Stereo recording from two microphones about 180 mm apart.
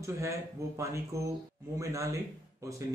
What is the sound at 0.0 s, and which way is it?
Speech, 15° right (ahead or behind).